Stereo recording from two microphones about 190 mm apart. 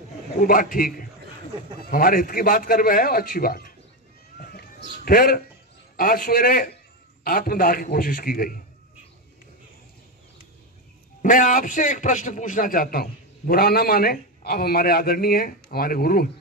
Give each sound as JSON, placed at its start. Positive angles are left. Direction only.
{"t": 0.5, "sound": "a man's voice", "side_deg": 50}
{"t": 4.4, "sound": "run", "side_deg": 50}
{"t": 5.0, "sound": "a man's voice", "side_deg": 50}
{"t": 11.2, "sound": "a man's voice", "side_deg": 45}